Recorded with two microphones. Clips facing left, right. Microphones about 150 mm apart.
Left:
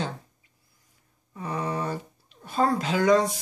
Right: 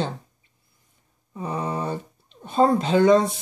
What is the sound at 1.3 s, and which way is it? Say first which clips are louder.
Speech: right 2 dB; 25° right (ahead or behind).